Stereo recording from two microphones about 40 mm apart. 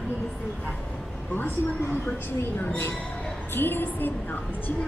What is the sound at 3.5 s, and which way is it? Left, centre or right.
Speech, left.